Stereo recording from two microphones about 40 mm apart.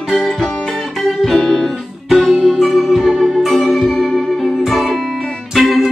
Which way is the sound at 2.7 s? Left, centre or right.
Centre.